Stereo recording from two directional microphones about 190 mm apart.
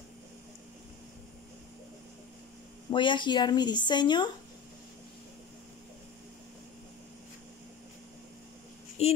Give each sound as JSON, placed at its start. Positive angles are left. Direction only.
{"t": 2.9, "sound": "speech", "side_deg": 25}
{"t": 9.0, "sound": "speech", "side_deg": 30}